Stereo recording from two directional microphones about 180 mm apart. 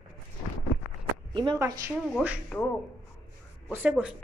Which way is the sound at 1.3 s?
25° right (ahead or behind).